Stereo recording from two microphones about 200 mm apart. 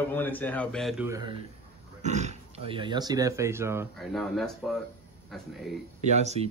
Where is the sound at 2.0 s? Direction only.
35° right (ahead or behind); by 3.9 s 10° right (ahead or behind).